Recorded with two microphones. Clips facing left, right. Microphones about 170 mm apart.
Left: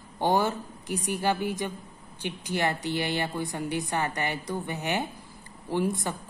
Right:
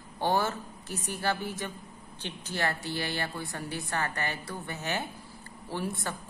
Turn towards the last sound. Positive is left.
turn(degrees=15)  # may be behind; listen again after turning